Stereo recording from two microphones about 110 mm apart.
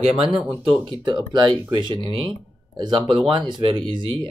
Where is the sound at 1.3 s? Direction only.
45° right (ahead or behind).